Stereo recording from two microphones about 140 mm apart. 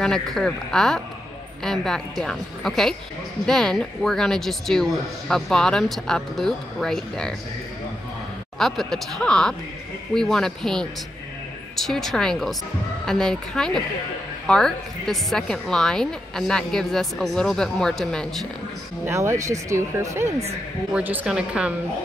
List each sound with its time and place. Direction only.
0.0 s a woman's voice: 5° left (ahead or behind)
8.5 s a woman's voice: centre (ahead or behind)
19.0 s speech: 20° right (ahead or behind)